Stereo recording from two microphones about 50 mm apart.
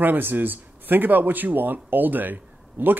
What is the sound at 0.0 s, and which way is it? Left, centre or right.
Speech, right.